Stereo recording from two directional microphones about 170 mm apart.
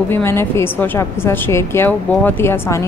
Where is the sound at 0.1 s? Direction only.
15° left (ahead or behind).